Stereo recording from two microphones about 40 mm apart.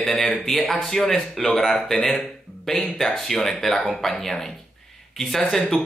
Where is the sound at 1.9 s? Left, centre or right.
Centre.